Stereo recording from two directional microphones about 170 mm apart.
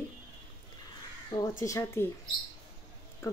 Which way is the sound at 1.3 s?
20° left (ahead or behind).